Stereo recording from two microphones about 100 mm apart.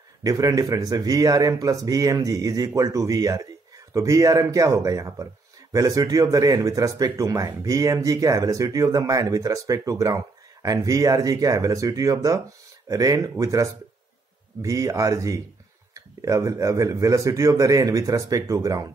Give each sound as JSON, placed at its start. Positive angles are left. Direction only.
{"t": 0.2, "sound": "speech", "side_deg": -35}